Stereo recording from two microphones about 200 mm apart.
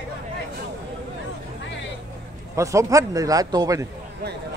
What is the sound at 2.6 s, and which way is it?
A man's voice, 15° right (ahead or behind).